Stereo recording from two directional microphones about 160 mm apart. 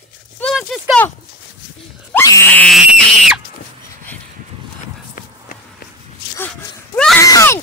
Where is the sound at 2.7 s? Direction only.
Centre (ahead or behind).